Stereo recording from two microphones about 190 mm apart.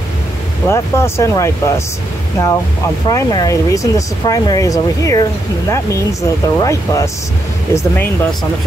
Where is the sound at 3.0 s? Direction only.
20° left (ahead or behind).